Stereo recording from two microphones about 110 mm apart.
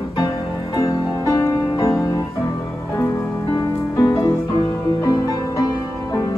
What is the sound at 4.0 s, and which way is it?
Music, 35° left (ahead or behind).